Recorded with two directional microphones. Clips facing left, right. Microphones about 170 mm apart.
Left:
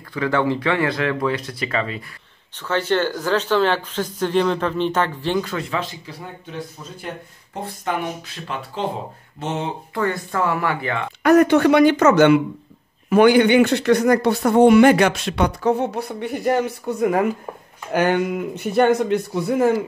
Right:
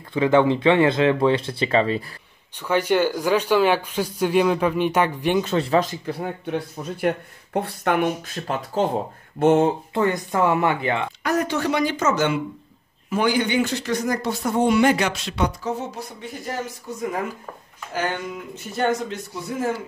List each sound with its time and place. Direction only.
0.1 s speech: 20° right (ahead or behind)
2.6 s speech: 10° right (ahead or behind); by 6.1 s 45° right (ahead or behind)
6.4 s speech: 60° right (ahead or behind)
8.5 s speech: 40° right (ahead or behind)
9.9 s speech: 15° right (ahead or behind)
11.2 s speech: 60° left (ahead or behind)